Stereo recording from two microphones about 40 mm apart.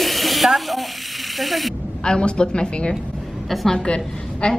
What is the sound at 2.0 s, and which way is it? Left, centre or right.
Speech, left.